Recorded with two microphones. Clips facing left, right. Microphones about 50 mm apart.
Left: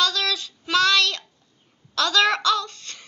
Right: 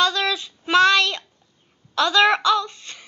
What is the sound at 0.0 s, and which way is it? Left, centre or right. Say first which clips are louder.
Child singing: right 3 dB; right.